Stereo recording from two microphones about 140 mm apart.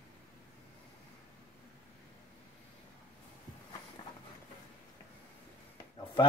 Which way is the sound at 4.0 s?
40° left (ahead or behind).